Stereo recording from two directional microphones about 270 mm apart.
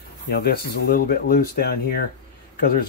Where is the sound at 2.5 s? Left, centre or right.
Left.